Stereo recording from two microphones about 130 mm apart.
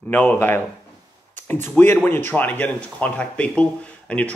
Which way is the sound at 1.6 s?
15° left (ahead or behind).